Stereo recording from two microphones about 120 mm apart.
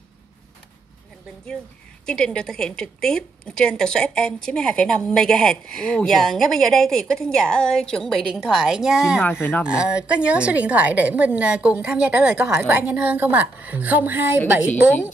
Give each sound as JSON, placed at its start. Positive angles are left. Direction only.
{"t": 2.0, "sound": "a woman's voice", "side_deg": 5}
{"t": 9.2, "sound": "speech", "side_deg": 20}
{"t": 9.7, "sound": "a woman's voice", "side_deg": -10}